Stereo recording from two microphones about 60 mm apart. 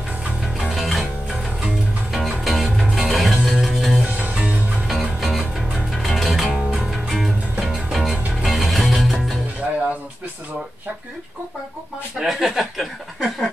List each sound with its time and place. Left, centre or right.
0.7 s music: centre
2.1 s music: centre
4.2 s music: right
4.8 s music: centre
12.2 s speech: centre